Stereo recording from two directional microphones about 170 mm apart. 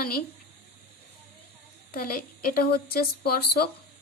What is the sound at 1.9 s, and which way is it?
A woman's voice, 60° left (ahead or behind).